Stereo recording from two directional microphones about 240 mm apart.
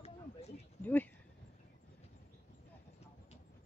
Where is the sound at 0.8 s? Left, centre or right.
Centre.